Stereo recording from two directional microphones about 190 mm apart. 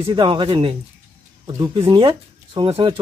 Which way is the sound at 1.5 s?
15° right (ahead or behind).